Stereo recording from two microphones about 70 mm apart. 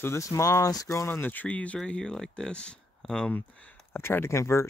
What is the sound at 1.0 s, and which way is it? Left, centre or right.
Speech, left.